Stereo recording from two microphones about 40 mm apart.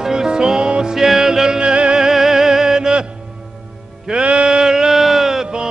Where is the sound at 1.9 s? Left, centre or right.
Centre.